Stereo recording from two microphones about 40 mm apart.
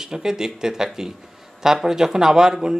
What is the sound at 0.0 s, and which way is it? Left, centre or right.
Speech, centre.